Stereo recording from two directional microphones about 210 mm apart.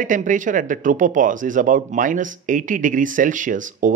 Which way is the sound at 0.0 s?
40° right (ahead or behind).